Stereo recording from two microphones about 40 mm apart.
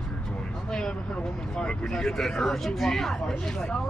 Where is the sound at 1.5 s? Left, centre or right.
Centre.